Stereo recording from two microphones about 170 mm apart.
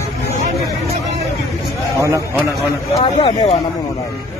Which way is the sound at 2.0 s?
15° right (ahead or behind).